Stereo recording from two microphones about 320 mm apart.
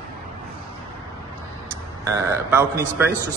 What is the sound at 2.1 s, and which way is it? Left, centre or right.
Speech, centre.